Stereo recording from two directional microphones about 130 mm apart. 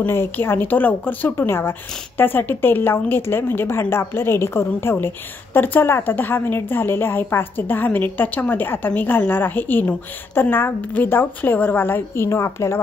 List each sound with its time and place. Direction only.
0.0 s speech: 15° left (ahead or behind)